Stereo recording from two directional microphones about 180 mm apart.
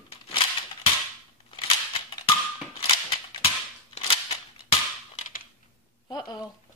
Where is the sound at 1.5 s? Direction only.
30° left (ahead or behind).